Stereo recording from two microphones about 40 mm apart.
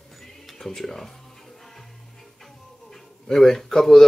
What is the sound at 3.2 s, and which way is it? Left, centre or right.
Speech, centre.